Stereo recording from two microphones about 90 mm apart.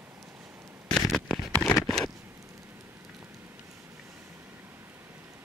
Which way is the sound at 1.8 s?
5° left (ahead or behind).